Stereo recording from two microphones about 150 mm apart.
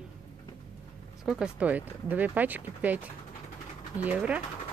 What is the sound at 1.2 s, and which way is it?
Speech, 5° right (ahead or behind).